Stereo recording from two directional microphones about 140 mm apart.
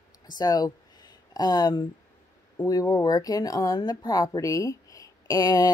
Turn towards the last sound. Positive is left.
turn(degrees=25)  # may be behind; listen again after turning